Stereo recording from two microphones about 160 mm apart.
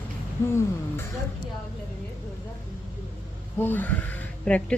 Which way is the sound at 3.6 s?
10° left (ahead or behind).